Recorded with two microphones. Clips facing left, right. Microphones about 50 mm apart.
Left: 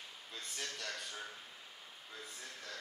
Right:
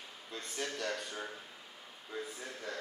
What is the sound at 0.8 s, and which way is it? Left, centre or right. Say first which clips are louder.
A man's voice: right 6 dB; centre.